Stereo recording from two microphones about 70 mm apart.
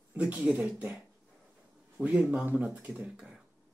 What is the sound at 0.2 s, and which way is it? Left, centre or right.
Speech, right.